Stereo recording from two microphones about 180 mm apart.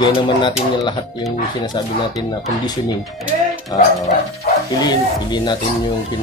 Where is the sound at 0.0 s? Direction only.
25° left (ahead or behind).